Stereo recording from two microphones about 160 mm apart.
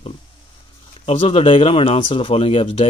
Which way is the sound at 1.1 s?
35° left (ahead or behind).